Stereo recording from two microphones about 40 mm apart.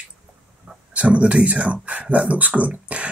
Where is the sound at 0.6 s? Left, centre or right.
Right.